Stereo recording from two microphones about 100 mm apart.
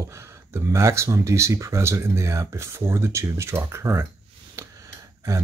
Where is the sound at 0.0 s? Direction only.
30° right (ahead or behind).